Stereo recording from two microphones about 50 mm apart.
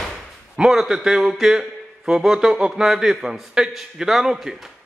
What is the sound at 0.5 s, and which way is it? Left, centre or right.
A man's voice, centre.